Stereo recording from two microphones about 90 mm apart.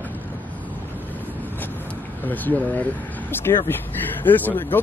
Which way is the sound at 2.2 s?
20° left (ahead or behind).